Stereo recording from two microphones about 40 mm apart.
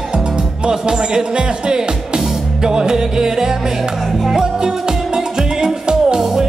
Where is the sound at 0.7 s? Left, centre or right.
Centre.